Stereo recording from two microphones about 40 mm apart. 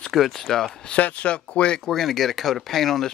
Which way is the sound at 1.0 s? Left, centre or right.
Left.